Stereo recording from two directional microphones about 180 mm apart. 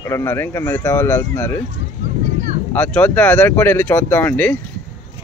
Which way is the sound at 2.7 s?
10° left (ahead or behind).